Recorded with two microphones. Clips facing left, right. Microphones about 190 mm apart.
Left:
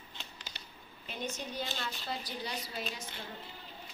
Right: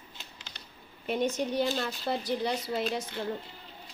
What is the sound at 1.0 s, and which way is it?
Speech, 60° right (ahead or behind).